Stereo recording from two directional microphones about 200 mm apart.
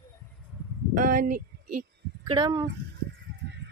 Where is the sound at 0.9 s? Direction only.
45° right (ahead or behind).